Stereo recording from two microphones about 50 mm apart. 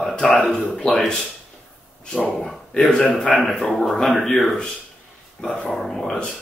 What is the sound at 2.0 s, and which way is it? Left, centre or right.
Speech, centre.